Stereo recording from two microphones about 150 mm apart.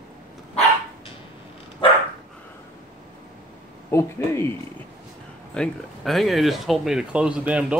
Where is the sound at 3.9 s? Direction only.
20° left (ahead or behind).